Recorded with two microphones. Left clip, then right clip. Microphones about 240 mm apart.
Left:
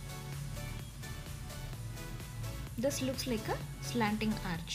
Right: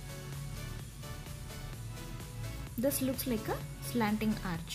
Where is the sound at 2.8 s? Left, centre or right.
Centre.